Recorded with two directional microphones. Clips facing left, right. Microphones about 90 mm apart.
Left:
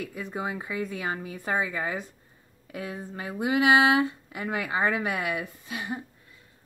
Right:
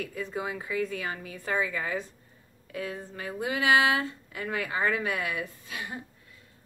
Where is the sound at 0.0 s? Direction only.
20° left (ahead or behind).